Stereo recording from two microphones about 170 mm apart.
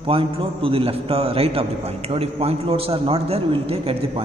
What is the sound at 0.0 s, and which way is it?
A man's voice, 30° right (ahead or behind).